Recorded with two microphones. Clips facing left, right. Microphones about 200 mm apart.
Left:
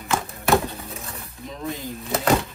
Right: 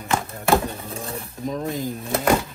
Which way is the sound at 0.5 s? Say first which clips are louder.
Right 1 dB; 30° right (ahead or behind).